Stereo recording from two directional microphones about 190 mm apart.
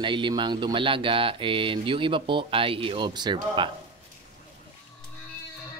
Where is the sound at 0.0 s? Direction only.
25° right (ahead or behind).